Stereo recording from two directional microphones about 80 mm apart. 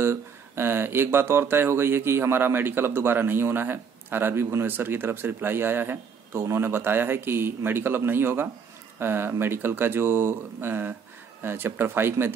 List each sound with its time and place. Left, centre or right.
0.0 s speech: right